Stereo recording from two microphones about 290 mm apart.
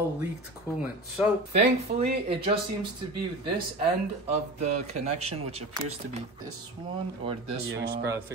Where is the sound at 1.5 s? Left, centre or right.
Right.